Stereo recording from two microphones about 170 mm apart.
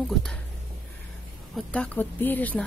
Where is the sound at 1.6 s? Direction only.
5° left (ahead or behind).